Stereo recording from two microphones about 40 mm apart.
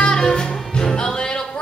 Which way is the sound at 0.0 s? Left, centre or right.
Centre.